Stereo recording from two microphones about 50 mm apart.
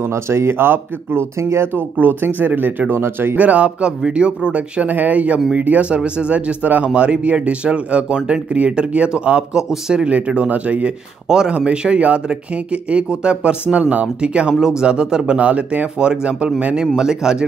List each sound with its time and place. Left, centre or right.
0.1 s speech: right
1.4 s speech: right
1.8 s speech: right
3.3 s speech: right
5.9 s speech: right
10.0 s speech: right
11.2 s speech: centre
11.5 s speech: right